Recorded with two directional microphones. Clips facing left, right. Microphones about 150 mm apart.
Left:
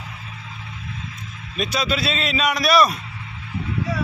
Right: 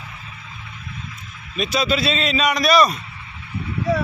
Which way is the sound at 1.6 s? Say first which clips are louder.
Right 3 dB; centre (ahead or behind).